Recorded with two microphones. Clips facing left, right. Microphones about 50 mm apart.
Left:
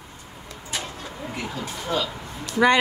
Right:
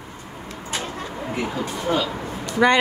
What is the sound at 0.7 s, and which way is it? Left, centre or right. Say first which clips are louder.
Vehicle: right 4 dB; right.